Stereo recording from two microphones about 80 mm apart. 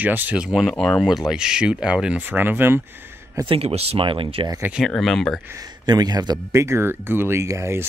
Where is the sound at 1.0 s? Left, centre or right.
Centre; by 2.8 s right.